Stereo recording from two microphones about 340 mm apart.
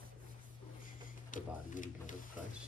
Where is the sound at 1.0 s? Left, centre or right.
Left.